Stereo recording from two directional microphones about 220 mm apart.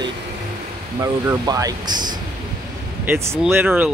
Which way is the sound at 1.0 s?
15° right (ahead or behind).